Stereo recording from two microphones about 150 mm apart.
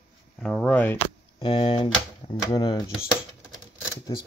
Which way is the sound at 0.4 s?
5° left (ahead or behind).